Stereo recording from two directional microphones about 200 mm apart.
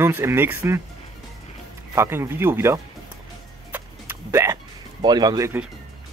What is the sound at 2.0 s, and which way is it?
Speech, 10° right (ahead or behind).